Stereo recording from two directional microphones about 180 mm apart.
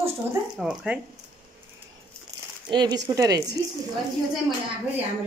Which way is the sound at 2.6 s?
25° right (ahead or behind).